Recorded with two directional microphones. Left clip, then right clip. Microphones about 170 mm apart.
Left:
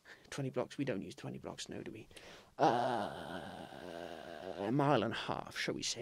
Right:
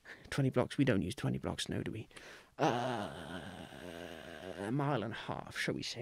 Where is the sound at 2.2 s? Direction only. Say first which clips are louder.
Right 2 dB; 10° right (ahead or behind).